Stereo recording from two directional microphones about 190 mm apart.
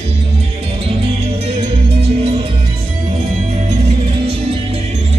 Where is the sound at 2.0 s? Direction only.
30° right (ahead or behind).